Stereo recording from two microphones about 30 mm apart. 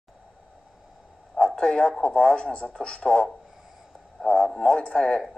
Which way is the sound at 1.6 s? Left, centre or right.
Left.